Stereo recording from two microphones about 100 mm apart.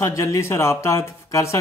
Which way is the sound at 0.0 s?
30° left (ahead or behind).